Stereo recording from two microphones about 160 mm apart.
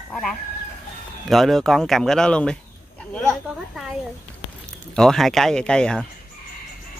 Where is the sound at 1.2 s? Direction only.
Centre (ahead or behind).